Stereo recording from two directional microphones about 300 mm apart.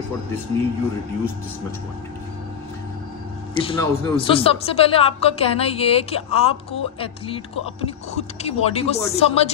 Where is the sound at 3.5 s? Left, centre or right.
Centre.